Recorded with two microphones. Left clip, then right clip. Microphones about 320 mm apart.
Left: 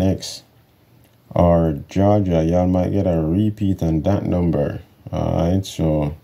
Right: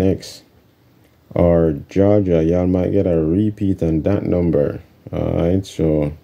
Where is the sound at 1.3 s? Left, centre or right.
Left.